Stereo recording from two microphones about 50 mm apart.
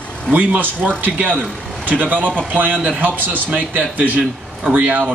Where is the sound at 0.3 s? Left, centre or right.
Right.